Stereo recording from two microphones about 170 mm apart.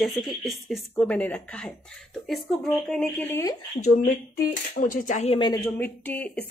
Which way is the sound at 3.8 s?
45° left (ahead or behind).